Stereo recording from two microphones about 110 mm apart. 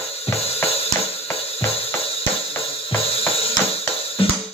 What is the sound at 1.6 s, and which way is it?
Music, 60° left (ahead or behind).